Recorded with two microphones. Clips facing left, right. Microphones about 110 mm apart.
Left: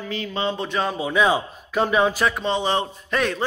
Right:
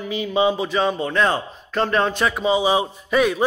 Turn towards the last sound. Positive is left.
turn(degrees=-10)  # may be behind; listen again after turning